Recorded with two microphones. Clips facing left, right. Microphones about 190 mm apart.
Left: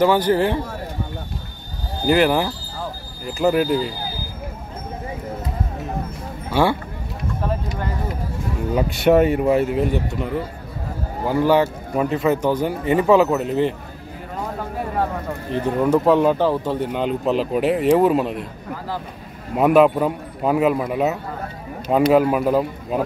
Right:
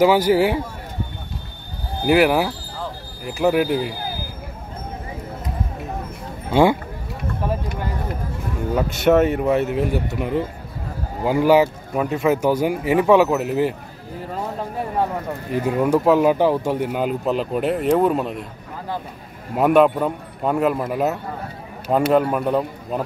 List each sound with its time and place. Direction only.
0.0 s speech: 10° right (ahead or behind)
2.0 s speech: 5° right (ahead or behind)
3.6 s speech: 60° right (ahead or behind)
6.5 s speech: 15° right (ahead or behind)
9.3 s speech: centre (ahead or behind)
10.1 s speech: 15° right (ahead or behind)
15.5 s speech: 10° right (ahead or behind)
19.5 s a man's voice: centre (ahead or behind)
22.1 s speech: 5° left (ahead or behind)